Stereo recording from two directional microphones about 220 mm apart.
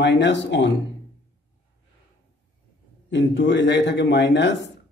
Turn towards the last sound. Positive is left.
turn(degrees=55)  # may be behind; listen again after turning